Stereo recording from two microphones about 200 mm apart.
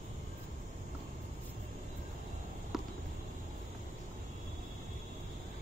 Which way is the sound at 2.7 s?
Centre (ahead or behind).